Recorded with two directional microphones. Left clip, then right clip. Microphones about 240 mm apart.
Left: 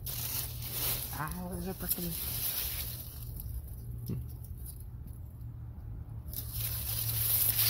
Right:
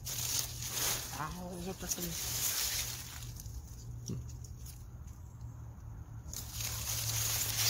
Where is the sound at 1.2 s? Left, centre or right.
Centre.